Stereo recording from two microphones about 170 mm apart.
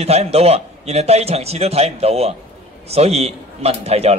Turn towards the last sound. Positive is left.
turn(degrees=-35)  # may be behind; listen again after turning